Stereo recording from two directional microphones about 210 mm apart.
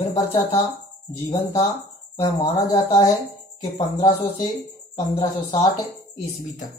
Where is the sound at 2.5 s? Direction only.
20° left (ahead or behind).